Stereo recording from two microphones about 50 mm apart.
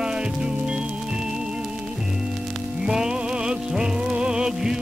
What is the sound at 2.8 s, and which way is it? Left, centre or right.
Music, centre.